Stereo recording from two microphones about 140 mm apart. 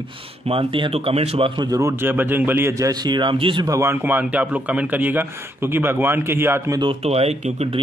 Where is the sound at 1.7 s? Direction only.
20° right (ahead or behind); by 3.7 s 35° right (ahead or behind).